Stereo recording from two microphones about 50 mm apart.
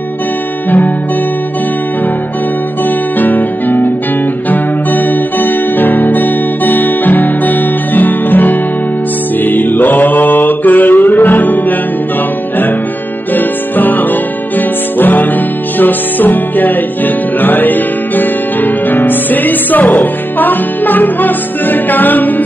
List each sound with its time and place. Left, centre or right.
0.7 s music: left
3.2 s music: left
9.4 s mantra: left
13.3 s music: left